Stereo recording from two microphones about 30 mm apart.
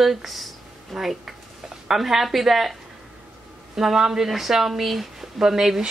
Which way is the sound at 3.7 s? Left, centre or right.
Centre.